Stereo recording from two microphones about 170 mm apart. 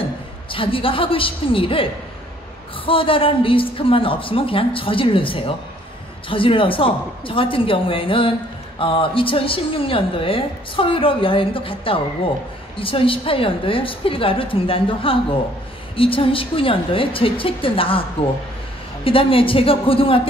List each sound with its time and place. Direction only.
0.5 s a woman's voice: 30° left (ahead or behind)
19.0 s a woman's voice: 30° left (ahead or behind)